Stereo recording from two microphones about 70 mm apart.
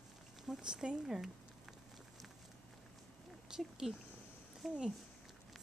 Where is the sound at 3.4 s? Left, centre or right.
Centre.